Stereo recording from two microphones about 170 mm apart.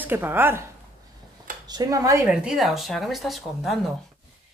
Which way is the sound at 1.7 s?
20° right (ahead or behind).